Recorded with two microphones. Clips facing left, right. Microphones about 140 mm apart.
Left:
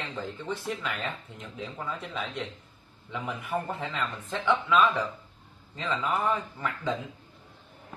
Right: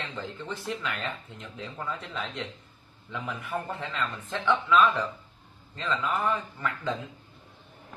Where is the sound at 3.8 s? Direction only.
5° left (ahead or behind).